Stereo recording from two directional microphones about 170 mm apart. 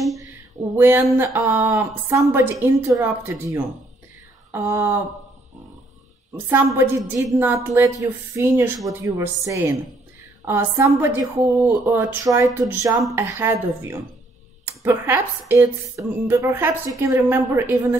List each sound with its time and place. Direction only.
0.2 s a sound: 15° right (ahead or behind)
1.1 s speech: 15° right (ahead or behind)
6.3 s speech: 15° right (ahead or behind)